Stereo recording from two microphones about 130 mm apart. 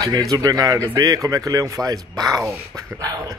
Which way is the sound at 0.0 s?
30° right (ahead or behind).